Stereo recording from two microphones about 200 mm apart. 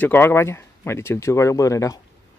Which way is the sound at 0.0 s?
10° left (ahead or behind).